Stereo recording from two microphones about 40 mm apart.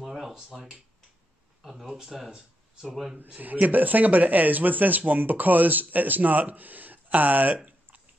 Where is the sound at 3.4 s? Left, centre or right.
Right.